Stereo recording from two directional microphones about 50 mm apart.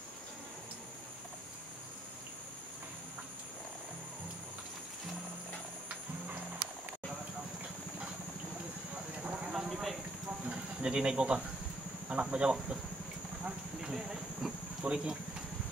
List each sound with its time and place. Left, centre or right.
9.2 s clip-clop: right
9.5 s a sound: centre
10.8 s speech: centre
13.7 s clip-clop: centre
14.8 s speech: centre